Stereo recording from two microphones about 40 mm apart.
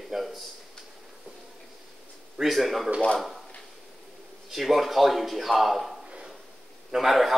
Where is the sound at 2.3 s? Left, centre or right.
Centre.